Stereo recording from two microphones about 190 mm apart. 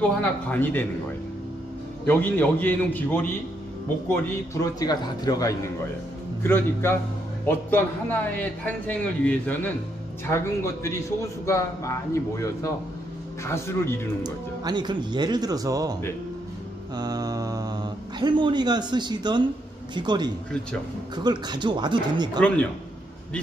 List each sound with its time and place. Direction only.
0.0 s a man's voice: 10° left (ahead or behind)
2.0 s a man's voice: 10° left (ahead or behind)
14.2 s speech: 20° right (ahead or behind)